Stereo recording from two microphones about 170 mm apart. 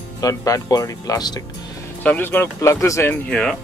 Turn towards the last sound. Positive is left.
turn(degrees=5)  # may be behind; listen again after turning